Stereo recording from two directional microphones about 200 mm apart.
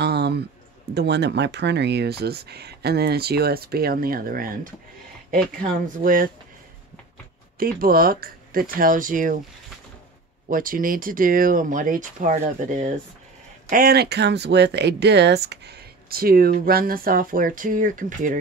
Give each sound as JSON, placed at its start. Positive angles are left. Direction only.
{"t": 0.0, "sound": "a sound", "side_deg": -55}
{"t": 0.9, "sound": "speech", "side_deg": -60}
{"t": 7.5, "sound": "speech", "side_deg": -45}
{"t": 10.5, "sound": "speech", "side_deg": -45}